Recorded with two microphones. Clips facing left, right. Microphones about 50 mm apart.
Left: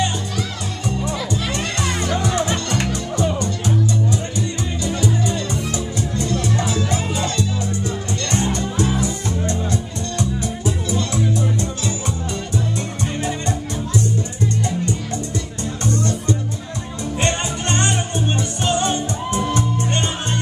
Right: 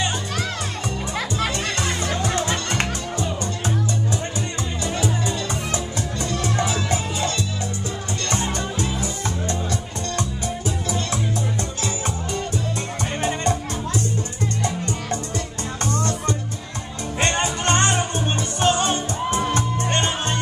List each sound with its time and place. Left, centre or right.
2.3 s music: left
4.8 s music: right
6.4 s music: right
6.9 s music: left
8.7 s music: left
13.2 s music: right
15.8 s music: right